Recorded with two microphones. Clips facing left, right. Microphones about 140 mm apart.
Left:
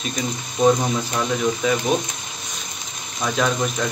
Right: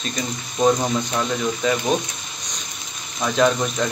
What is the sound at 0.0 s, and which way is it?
Speech, centre (ahead or behind).